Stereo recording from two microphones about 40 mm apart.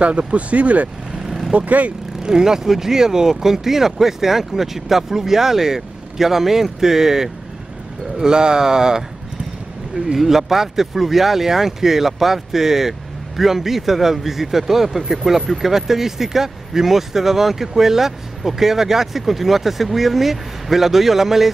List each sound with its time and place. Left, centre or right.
0.0 s speech: right
1.1 s vehicle: centre
1.5 s speech: right
2.2 s speech: centre
10.1 s speech: centre